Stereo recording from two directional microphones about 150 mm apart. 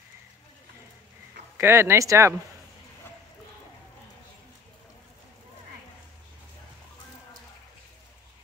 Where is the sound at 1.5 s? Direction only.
15° right (ahead or behind).